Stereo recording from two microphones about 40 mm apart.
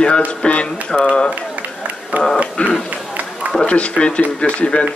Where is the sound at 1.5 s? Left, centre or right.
Right.